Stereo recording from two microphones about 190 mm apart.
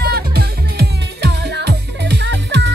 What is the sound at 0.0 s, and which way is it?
Music, 55° right (ahead or behind).